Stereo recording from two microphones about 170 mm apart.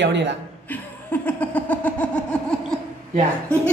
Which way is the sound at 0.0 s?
90° right.